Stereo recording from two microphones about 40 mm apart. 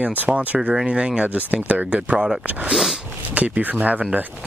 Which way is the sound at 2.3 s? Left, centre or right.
Centre.